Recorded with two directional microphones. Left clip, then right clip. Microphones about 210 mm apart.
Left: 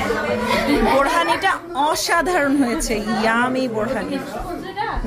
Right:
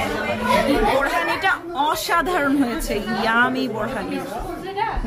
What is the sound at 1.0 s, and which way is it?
A woman's voice, 10° left (ahead or behind).